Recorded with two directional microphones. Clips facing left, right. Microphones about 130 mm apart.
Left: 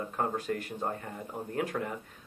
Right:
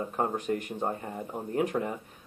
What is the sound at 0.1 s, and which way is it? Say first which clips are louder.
Speech: right 2 dB; 20° right (ahead or behind).